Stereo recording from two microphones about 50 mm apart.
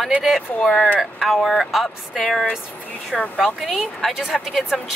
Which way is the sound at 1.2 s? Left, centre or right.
Centre.